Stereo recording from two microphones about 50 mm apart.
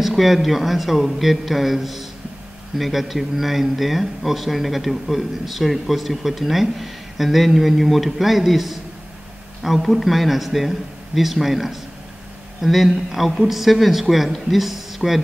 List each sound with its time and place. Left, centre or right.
0.0 s a man's voice: centre